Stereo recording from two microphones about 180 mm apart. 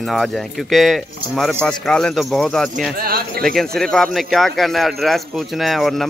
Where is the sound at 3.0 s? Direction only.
55° right (ahead or behind).